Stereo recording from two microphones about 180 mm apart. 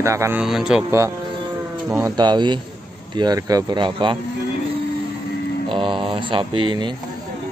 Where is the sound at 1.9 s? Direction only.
20° right (ahead or behind).